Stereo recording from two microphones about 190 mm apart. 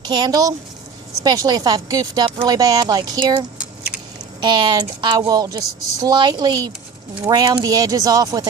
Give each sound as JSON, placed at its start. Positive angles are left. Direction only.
{"t": 0.0, "sound": "a woman's voice", "side_deg": -20}